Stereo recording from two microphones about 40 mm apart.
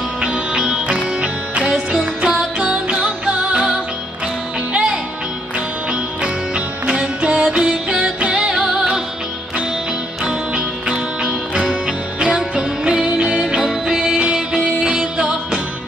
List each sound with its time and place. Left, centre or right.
0.2 s music: right
1.9 s music: centre
6.2 s music: right
10.2 s music: centre